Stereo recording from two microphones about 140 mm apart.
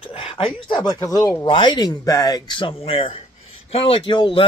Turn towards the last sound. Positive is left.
turn(degrees=35)  # may be behind; listen again after turning